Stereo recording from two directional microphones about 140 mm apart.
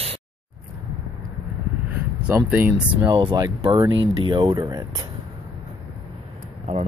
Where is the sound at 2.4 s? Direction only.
10° right (ahead or behind).